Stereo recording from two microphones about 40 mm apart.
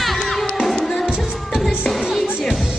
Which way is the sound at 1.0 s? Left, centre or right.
Centre.